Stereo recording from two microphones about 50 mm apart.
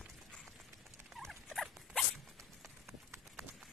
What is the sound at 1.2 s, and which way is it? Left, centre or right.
Rodents, centre.